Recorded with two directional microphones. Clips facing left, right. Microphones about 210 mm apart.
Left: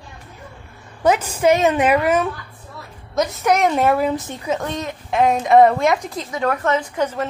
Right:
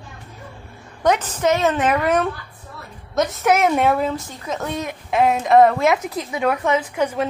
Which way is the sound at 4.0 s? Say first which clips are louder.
Left 3 dB; 20° left (ahead or behind).